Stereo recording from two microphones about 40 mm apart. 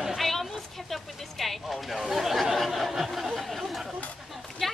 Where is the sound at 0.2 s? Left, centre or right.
Centre.